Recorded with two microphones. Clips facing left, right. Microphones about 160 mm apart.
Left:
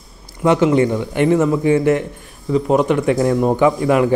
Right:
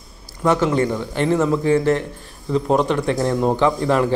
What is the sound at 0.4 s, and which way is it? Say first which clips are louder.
A man's voice: left 4 dB; 15° left (ahead or behind).